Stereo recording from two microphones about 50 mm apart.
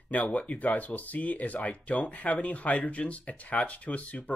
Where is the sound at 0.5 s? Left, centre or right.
Left.